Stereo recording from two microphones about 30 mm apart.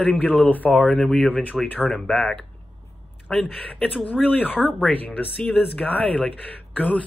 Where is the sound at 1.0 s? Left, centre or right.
Centre.